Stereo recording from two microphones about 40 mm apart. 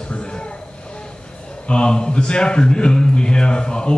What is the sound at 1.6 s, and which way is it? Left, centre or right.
A man's voice, left.